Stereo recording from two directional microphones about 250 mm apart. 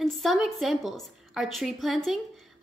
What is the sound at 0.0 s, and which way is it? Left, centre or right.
A woman's voice, centre.